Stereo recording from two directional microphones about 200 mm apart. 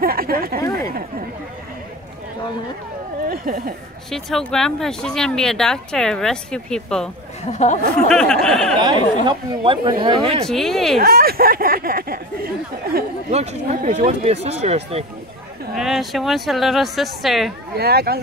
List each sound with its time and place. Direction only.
0.0 s speech: 45° right (ahead or behind)
0.6 s speech: 15° left (ahead or behind)
3.3 s speech: 45° right (ahead or behind)
4.1 s speech: centre (ahead or behind)
7.5 s speech: 35° left (ahead or behind)
8.1 s speech: 5° left (ahead or behind)
8.7 s speech: 25° right (ahead or behind)
10.4 s speech: centre (ahead or behind)
11.0 s speech: 50° right (ahead or behind)
13.3 s speech: 35° right (ahead or behind)
15.7 s speech: centre (ahead or behind)
17.7 s speech: 50° right (ahead or behind)